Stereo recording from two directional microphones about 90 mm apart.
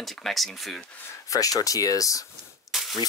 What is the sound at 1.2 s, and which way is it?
Speech, 40° left (ahead or behind).